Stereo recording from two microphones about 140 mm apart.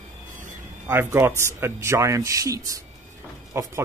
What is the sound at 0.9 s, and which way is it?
Speech, 15° right (ahead or behind).